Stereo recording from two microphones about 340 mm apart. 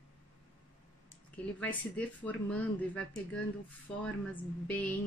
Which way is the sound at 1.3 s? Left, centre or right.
Centre.